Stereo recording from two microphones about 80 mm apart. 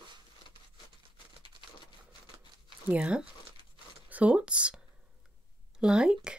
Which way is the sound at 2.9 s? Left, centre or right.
Centre.